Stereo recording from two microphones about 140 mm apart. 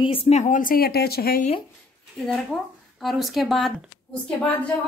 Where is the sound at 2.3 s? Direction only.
Centre (ahead or behind).